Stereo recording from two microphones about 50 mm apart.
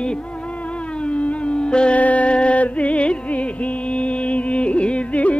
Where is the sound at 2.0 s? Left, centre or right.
Left.